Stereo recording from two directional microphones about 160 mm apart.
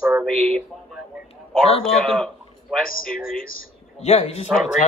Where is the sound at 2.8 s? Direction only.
65° left (ahead or behind).